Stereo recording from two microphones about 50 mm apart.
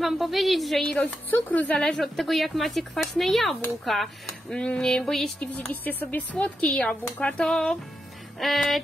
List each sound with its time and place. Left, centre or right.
0.0 s speech: centre
1.5 s speech: left
1.8 s speech: centre
4.5 s a sound: centre
5.6 s speech: left
6.4 s speech: left
7.4 s a sound: centre
8.4 s speech: centre